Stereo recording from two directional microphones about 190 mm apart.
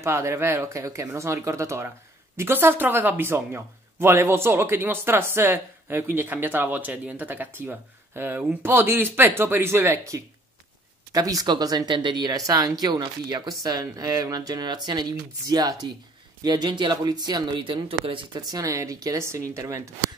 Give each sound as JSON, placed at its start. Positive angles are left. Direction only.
{"t": 0.0, "sound": "speech", "side_deg": -15}
{"t": 18.5, "sound": "speech", "side_deg": -15}